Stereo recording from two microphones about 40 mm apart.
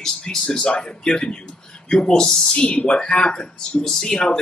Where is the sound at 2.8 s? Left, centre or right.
Left.